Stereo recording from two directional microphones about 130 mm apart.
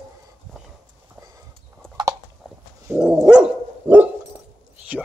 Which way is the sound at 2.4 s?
5° left (ahead or behind).